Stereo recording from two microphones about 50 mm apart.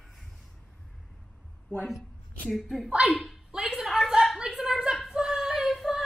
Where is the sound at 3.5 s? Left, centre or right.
Centre.